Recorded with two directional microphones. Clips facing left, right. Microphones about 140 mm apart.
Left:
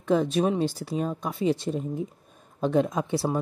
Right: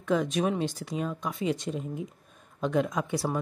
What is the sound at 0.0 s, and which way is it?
Speech, 30° left (ahead or behind).